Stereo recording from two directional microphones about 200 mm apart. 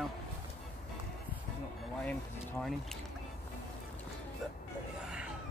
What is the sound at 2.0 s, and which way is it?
Speech, 5° left (ahead or behind).